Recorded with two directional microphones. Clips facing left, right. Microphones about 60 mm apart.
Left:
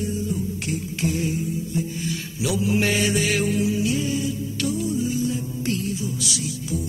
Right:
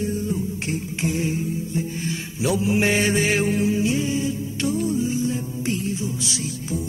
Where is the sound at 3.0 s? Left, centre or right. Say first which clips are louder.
Right 2 dB; right.